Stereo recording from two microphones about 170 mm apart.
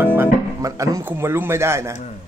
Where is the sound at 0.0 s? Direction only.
10° right (ahead or behind).